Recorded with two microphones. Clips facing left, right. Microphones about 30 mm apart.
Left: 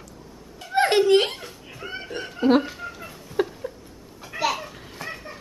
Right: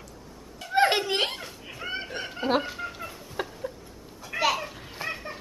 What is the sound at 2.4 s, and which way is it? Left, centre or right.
Fowl, centre.